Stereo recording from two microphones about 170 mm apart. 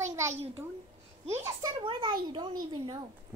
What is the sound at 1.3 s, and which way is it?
Speech, 15° right (ahead or behind).